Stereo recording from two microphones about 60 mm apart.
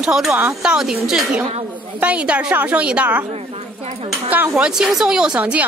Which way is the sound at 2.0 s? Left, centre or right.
Right.